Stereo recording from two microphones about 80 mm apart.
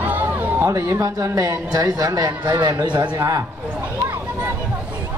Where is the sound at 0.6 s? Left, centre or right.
Right.